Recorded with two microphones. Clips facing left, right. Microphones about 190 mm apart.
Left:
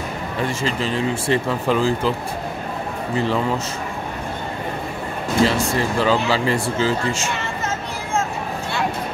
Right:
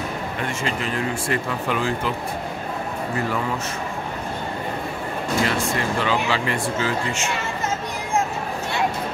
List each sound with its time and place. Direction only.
0.4 s speech: 30° left (ahead or behind)
5.4 s speech: 35° left (ahead or behind)